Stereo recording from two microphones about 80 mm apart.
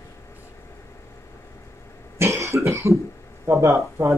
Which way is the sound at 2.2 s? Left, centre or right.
Right.